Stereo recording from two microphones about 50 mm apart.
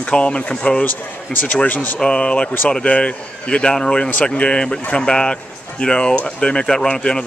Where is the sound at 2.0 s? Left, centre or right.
Centre.